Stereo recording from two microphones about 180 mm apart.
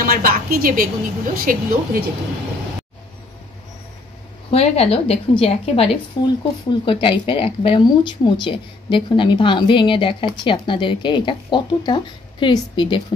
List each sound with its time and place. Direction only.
0.0 s a woman's voice: 50° right (ahead or behind)
4.5 s a woman's voice: 35° left (ahead or behind)